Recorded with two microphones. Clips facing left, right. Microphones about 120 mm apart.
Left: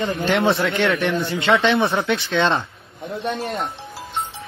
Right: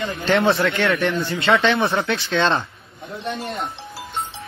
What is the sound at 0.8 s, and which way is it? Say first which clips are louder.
Speech: left 1 dB; 15° left (ahead or behind).